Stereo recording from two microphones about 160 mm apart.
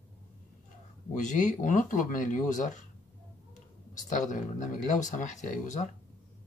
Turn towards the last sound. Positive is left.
turn(degrees=50)  # may be behind; listen again after turning